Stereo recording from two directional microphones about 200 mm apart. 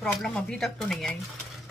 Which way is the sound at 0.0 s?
Centre (ahead or behind).